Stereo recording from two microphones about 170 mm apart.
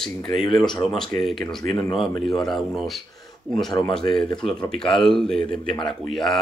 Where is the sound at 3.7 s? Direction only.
20° left (ahead or behind).